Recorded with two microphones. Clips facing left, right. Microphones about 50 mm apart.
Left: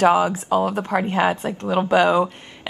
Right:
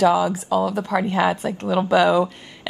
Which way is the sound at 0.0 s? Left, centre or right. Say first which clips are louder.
Left 1 dB; left.